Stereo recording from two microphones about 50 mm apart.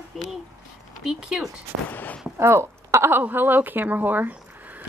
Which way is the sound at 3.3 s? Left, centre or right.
Right.